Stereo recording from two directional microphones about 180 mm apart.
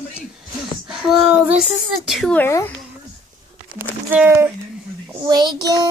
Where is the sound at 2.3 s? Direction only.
10° left (ahead or behind).